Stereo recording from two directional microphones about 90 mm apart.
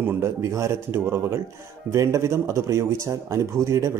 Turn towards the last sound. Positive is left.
turn(degrees=-35)  # may be behind; listen again after turning